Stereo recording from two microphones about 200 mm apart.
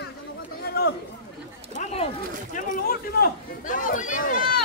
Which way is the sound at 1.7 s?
30° left (ahead or behind).